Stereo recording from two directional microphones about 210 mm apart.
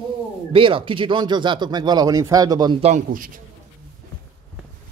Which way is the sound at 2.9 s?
40° right (ahead or behind).